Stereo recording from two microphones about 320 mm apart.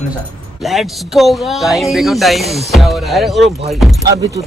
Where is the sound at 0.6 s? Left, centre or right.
Centre.